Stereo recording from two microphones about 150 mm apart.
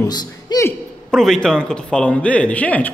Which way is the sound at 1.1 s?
5° left (ahead or behind).